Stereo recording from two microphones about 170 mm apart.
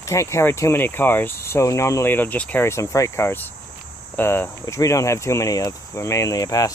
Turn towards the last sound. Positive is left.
turn(degrees=20)  # may be behind; listen again after turning